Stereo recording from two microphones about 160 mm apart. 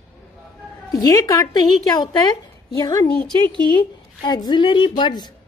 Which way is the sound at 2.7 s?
20° left (ahead or behind).